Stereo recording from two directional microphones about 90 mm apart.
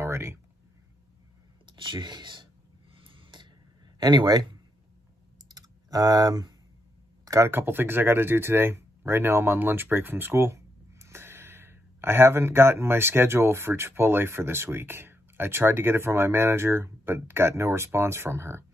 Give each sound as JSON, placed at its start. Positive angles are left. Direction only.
{"t": 0.0, "sound": "a sound", "side_deg": -30}
{"t": 1.7, "sound": "speech", "side_deg": -60}
{"t": 2.9, "sound": "a sound", "side_deg": -70}
{"t": 4.0, "sound": "speech", "side_deg": -50}
{"t": 5.5, "sound": "typing", "side_deg": -45}
{"t": 7.2, "sound": "speech", "side_deg": -35}
{"t": 7.5, "sound": "speech", "side_deg": -25}